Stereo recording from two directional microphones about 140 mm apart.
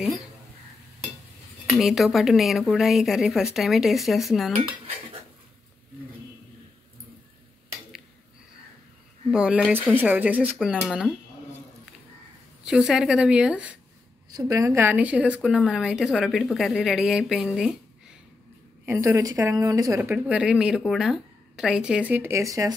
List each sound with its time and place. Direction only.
1.7 s a woman's voice: centre (ahead or behind)
9.3 s a woman's voice: 10° right (ahead or behind)
12.6 s a woman's voice: 5° right (ahead or behind)
14.3 s a woman's voice: 25° right (ahead or behind); by 17.7 s 5° right (ahead or behind)
18.9 s a woman's voice: 20° right (ahead or behind)
20.0 s a woman's voice: 10° right (ahead or behind)